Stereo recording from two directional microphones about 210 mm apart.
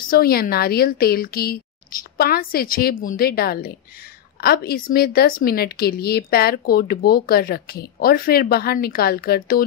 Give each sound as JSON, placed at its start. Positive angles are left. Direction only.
{"t": 0.1, "sound": "speech", "side_deg": 45}